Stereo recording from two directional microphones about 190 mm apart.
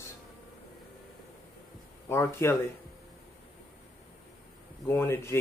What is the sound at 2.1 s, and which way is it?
Speech, 15° left (ahead or behind).